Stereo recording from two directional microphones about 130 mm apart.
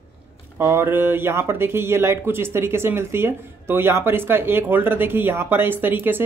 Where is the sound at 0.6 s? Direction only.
20° right (ahead or behind).